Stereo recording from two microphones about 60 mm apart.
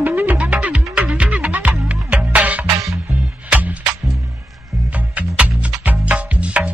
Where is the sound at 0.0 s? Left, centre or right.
Right.